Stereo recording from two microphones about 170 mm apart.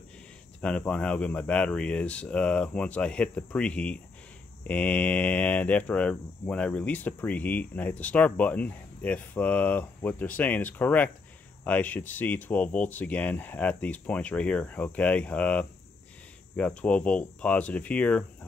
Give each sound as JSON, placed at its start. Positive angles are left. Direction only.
{"t": 0.6, "sound": "speech", "side_deg": 5}